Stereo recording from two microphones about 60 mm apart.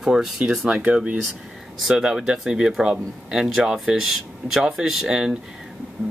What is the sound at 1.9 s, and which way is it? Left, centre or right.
Speech, centre.